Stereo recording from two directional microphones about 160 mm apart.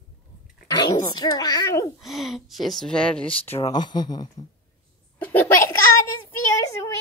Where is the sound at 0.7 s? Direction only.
25° left (ahead or behind).